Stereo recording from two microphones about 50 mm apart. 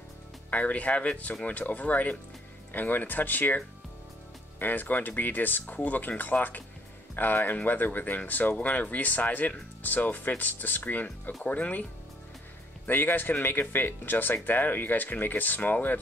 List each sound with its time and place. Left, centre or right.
0.5 s speech: left
12.8 s speech: left